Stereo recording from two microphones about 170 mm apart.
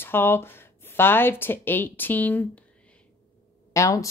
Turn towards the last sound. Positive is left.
turn(degrees=20)  # may be behind; listen again after turning